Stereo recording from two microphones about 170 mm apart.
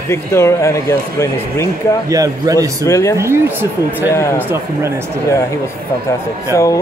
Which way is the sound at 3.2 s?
15° right (ahead or behind).